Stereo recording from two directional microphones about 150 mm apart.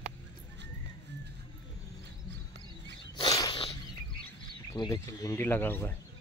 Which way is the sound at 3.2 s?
25° left (ahead or behind).